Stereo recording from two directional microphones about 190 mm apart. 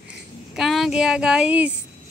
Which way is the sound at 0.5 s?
Centre (ahead or behind).